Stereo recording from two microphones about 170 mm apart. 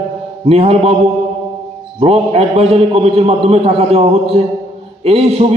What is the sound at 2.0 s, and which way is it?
A man's voice, 35° right (ahead or behind).